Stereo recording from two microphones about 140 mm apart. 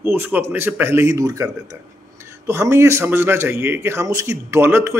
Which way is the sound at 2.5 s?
20° right (ahead or behind).